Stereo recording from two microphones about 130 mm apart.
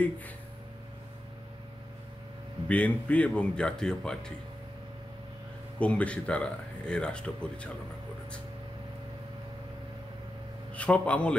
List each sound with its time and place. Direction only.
2.7 s speech: 10° left (ahead or behind)
5.8 s speech: 10° left (ahead or behind)
10.7 s a man's voice: 10° left (ahead or behind)